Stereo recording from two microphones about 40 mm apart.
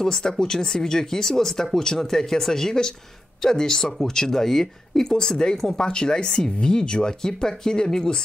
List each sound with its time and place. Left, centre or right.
0.0 s speech: centre